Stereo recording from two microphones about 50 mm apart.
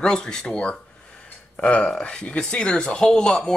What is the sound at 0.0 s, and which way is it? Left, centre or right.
Speech, centre.